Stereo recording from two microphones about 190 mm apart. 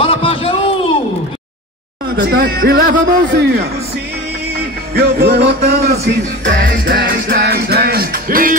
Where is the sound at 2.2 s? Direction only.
50° right (ahead or behind).